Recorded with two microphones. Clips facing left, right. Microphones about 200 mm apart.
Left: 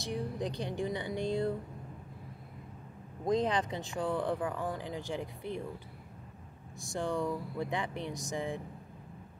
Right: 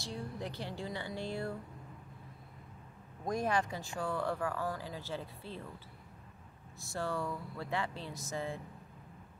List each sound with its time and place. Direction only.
0.0 s speech: 15° left (ahead or behind)
3.3 s speech: 20° left (ahead or behind)
6.9 s speech: 15° left (ahead or behind)